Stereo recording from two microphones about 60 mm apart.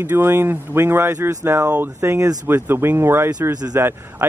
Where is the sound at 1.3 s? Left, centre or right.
Right.